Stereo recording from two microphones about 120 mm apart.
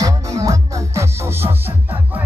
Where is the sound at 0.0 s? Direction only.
30° right (ahead or behind).